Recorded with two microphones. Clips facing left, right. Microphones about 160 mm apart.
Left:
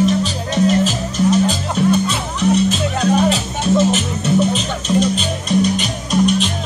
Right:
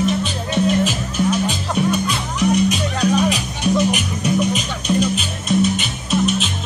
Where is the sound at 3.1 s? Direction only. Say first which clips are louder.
Left 3 dB; 30° left (ahead or behind).